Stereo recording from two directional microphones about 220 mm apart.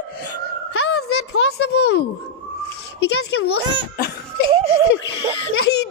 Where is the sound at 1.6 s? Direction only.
50° left (ahead or behind).